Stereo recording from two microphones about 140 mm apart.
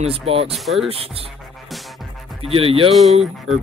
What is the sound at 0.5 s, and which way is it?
Music, centre (ahead or behind).